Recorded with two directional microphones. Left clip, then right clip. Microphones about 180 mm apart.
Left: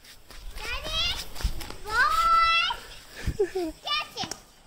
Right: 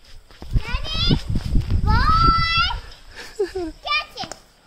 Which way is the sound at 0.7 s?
5° right (ahead or behind).